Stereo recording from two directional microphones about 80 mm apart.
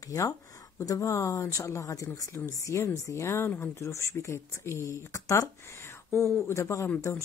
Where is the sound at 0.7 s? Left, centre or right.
Left.